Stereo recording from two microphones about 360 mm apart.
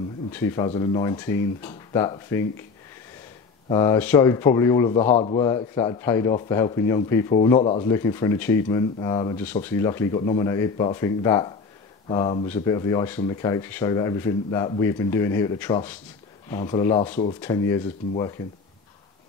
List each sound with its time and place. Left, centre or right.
0.3 s speech: centre
3.6 s speech: centre
17.4 s speech: centre